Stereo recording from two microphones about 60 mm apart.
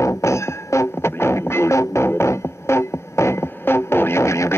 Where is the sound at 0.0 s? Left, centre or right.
Left.